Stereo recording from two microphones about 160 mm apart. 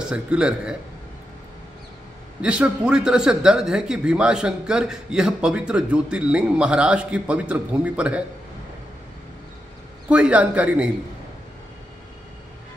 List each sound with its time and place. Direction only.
0.1 s a man's voice: 5° right (ahead or behind)
2.4 s a man's voice: 5° right (ahead or behind)
10.0 s a man's voice: 5° right (ahead or behind)